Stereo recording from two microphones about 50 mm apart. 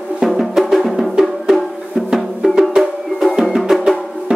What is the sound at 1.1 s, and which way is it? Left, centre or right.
Music, centre.